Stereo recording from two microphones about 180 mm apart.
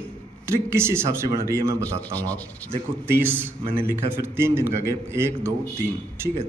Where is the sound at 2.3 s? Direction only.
10° left (ahead or behind).